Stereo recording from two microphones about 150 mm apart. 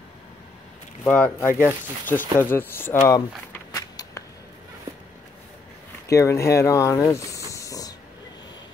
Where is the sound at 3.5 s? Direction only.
20° left (ahead or behind).